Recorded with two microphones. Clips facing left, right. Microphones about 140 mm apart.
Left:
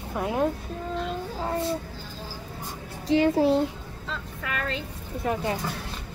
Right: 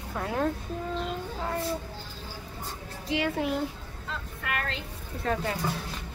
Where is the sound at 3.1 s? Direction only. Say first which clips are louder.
Left 8 dB; 35° left (ahead or behind).